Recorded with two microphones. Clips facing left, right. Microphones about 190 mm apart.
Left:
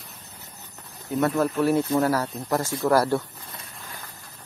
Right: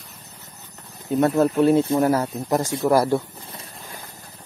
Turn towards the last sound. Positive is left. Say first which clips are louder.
# right 2 dB
turn(degrees=-15)  # may be behind; listen again after turning